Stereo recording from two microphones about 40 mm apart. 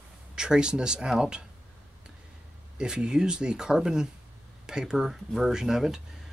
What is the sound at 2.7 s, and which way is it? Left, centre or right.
Speech, centre.